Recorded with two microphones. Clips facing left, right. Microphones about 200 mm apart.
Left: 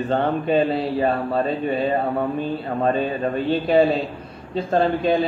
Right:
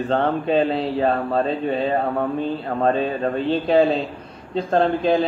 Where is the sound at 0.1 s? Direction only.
5° left (ahead or behind).